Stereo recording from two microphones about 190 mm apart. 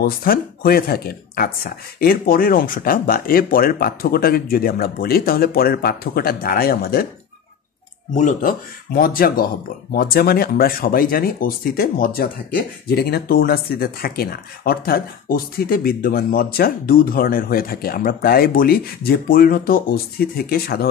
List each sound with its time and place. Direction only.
0.0 s speech: 50° left (ahead or behind)
8.1 s speech: 40° left (ahead or behind)